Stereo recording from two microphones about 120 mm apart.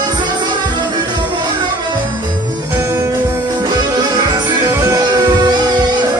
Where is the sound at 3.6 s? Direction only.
35° right (ahead or behind).